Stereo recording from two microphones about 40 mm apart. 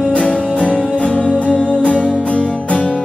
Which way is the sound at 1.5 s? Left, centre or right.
Left.